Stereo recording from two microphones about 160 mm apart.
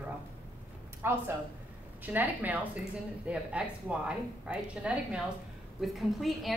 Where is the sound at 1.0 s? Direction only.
15° right (ahead or behind).